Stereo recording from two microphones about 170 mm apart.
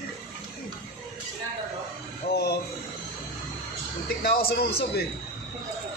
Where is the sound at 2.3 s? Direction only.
70° left (ahead or behind).